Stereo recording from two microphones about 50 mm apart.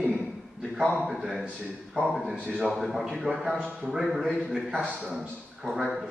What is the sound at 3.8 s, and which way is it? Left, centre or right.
A man's voice, centre.